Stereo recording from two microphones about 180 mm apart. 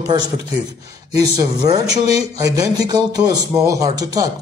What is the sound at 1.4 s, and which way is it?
A man's voice, 20° right (ahead or behind).